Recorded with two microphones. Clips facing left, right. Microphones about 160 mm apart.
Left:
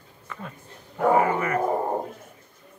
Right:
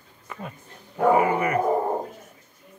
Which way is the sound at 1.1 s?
15° right (ahead or behind).